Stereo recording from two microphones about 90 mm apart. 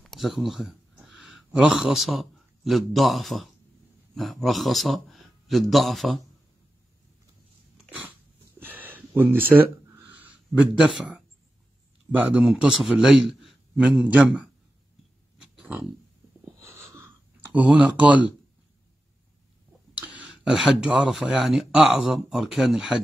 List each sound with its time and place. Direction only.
0.0 s a man's voice: centre (ahead or behind)
8.5 s a sound: 20° right (ahead or behind)
10.9 s a man's voice: 10° right (ahead or behind)
13.7 s a man's voice: 15° right (ahead or behind)
15.3 s a sound: 10° right (ahead or behind)
17.6 s a man's voice: 15° right (ahead or behind)
19.9 s speech: 15° right (ahead or behind)